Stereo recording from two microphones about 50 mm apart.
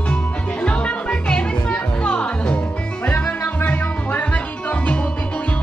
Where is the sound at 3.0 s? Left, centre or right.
Left.